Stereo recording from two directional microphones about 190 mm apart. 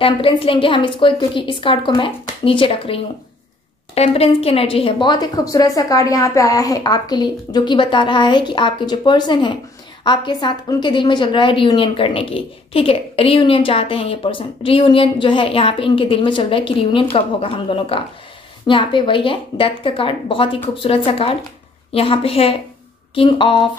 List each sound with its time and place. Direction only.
0.0 s a woman's voice: 25° left (ahead or behind)